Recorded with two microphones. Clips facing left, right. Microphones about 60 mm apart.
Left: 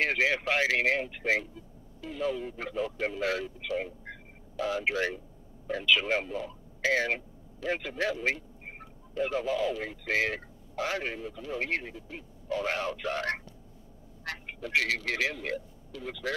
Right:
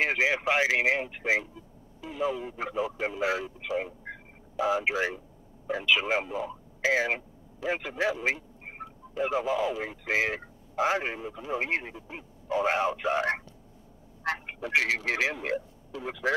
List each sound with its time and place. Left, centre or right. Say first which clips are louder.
0.0 s a man's voice: right 1 dB; centre